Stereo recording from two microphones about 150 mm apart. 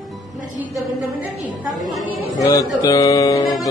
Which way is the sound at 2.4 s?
25° left (ahead or behind).